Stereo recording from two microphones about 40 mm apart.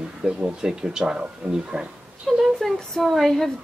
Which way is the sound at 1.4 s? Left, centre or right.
Right.